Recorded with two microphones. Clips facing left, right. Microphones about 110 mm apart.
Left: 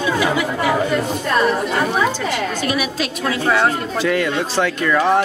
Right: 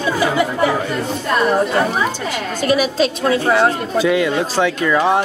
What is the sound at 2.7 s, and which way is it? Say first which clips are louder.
A woman's voice: right 6 dB; 30° right (ahead or behind).